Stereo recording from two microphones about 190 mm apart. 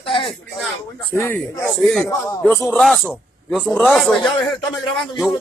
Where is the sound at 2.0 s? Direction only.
15° left (ahead or behind).